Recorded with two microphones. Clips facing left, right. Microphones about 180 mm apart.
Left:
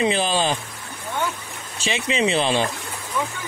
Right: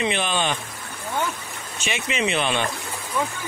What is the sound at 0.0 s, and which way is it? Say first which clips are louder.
Speech: left 3 dB; 35° left (ahead or behind).